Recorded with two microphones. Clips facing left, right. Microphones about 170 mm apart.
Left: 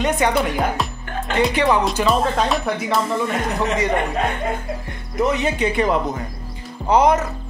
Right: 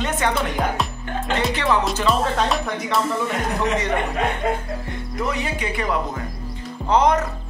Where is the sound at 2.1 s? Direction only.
Centre (ahead or behind).